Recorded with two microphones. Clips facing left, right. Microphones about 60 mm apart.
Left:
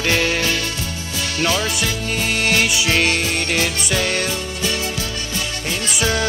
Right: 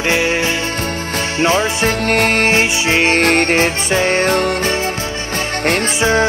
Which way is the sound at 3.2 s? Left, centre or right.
Right.